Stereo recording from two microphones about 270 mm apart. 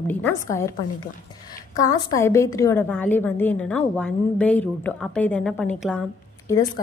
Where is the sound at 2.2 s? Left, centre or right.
Centre.